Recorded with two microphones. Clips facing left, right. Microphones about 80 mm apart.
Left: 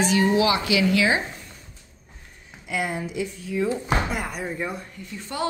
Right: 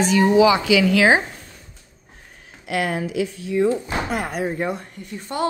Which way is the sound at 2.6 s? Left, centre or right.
Right.